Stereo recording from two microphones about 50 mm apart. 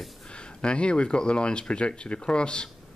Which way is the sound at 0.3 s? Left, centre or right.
Centre.